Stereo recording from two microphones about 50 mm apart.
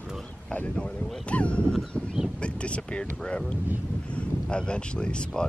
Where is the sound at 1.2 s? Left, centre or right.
Left.